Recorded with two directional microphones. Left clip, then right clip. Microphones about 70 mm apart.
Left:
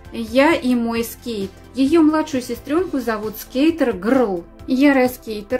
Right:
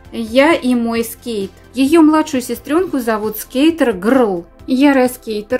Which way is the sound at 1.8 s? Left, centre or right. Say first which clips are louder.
Right 5 dB; right.